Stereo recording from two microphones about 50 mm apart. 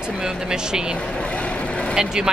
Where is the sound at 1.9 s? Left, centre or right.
Centre.